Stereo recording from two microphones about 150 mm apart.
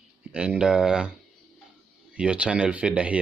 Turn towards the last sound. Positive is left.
turn(degrees=-10)  # may be behind; listen again after turning